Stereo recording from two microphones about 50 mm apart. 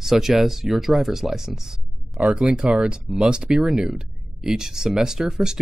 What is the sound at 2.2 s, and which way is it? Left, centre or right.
Speech, right.